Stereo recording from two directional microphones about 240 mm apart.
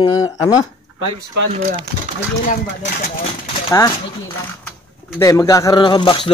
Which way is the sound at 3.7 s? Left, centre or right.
Centre.